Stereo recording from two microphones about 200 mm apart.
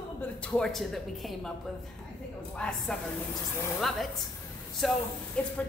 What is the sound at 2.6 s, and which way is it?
Speech, 5° left (ahead or behind).